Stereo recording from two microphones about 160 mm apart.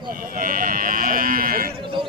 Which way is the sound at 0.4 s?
60° right (ahead or behind).